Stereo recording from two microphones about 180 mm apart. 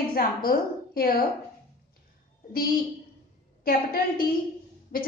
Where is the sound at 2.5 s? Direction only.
55° left (ahead or behind).